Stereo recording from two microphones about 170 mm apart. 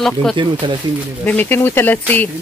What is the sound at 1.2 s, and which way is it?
Speech, 10° left (ahead or behind).